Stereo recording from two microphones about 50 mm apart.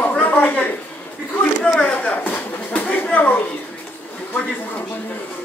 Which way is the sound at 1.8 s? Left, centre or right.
Left.